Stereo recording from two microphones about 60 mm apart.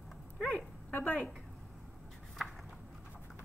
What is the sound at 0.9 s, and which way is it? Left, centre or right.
Speech, left.